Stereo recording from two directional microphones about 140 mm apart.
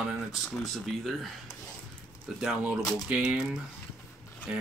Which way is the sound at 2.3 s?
5° right (ahead or behind).